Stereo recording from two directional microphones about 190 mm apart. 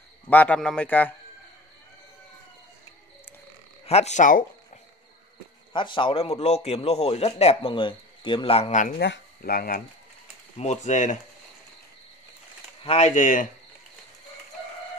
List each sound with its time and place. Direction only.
0.3 s a man's voice: 10° left (ahead or behind)
3.8 s a man's voice: 35° left (ahead or behind)
5.7 s a man's voice: 25° left (ahead or behind); by 9.0 s 40° left (ahead or behind)
9.0 s speech: 60° left (ahead or behind)
10.6 s a man's voice: 40° left (ahead or behind)
12.8 s a man's voice: 35° left (ahead or behind)